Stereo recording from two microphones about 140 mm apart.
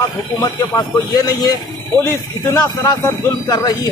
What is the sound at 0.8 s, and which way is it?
Speech, 30° left (ahead or behind).